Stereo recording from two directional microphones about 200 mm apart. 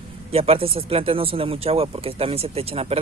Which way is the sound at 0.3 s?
30° right (ahead or behind).